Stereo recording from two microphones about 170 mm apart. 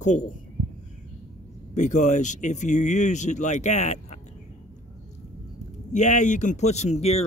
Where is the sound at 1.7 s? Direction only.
45° left (ahead or behind).